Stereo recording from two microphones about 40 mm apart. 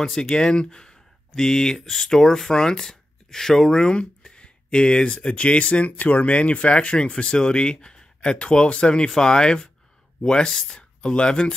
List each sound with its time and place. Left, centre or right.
0.0 s speech: centre